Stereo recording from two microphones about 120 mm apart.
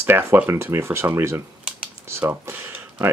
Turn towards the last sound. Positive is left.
turn(degrees=-15)  # may be behind; listen again after turning